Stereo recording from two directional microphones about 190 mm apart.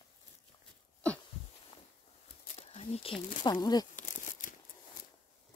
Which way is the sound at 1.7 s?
30° left (ahead or behind).